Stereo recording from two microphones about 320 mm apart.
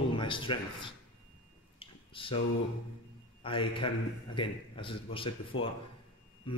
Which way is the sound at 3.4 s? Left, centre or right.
Centre.